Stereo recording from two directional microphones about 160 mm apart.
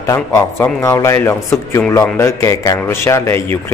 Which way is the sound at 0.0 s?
20° left (ahead or behind).